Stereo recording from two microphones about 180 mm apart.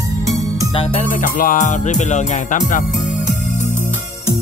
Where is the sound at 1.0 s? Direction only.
50° left (ahead or behind).